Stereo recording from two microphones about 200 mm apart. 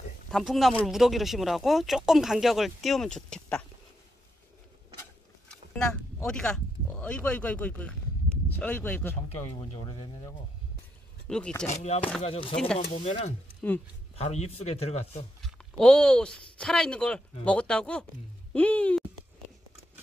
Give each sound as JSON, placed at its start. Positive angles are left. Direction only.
{"t": 0.3, "sound": "speech", "side_deg": 0}
{"t": 6.2, "sound": "speech", "side_deg": 5}
{"t": 9.3, "sound": "speech", "side_deg": 30}
{"t": 11.2, "sound": "speech", "side_deg": 5}
{"t": 11.6, "sound": "speech", "side_deg": 35}
{"t": 15.4, "sound": "speech", "side_deg": 5}